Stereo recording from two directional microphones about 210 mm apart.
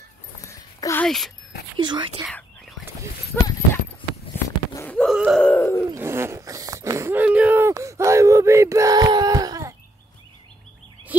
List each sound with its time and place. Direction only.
0.5 s a sound: 15° left (ahead or behind)
1.0 s speech: centre (ahead or behind)
1.8 s speech: 20° right (ahead or behind)
3.3 s clip-clop: 5° left (ahead or behind)
4.7 s a sound: 5° left (ahead or behind)
5.9 s zipper: 10° right (ahead or behind)